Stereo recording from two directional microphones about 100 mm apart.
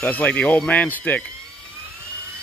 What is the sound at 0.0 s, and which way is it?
Speech, 15° left (ahead or behind).